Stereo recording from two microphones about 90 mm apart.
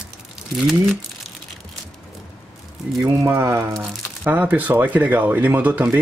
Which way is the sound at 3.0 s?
35° right (ahead or behind).